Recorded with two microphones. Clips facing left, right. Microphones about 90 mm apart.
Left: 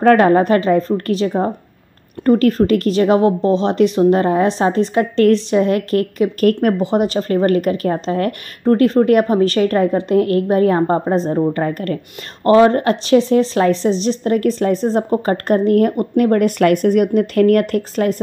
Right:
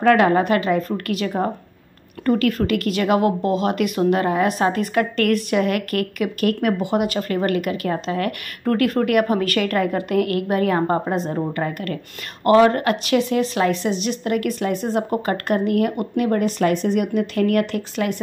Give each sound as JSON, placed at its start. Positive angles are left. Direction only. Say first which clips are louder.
{"t": 0.0, "sound": "a woman's voice", "louder": "left 4 dB", "side_deg": 40}